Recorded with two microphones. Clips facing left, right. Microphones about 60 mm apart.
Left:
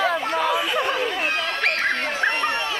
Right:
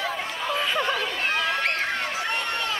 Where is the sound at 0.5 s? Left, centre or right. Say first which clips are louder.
Left 2 dB; centre.